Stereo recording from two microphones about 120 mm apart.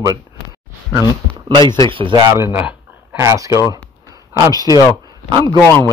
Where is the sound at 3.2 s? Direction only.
25° right (ahead or behind).